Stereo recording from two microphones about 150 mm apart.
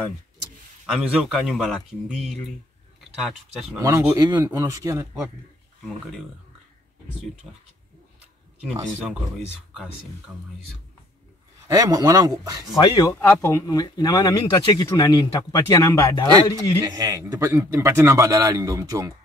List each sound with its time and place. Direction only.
0.8 s a man's voice: centre (ahead or behind)
3.8 s a man's voice: 20° right (ahead or behind)
10.3 s speech: 10° right (ahead or behind)
11.6 s a man's voice: 25° right (ahead or behind)
12.8 s speech: 25° left (ahead or behind)
13.1 s speech: 15° left (ahead or behind)
16.8 s a man's voice: 25° right (ahead or behind)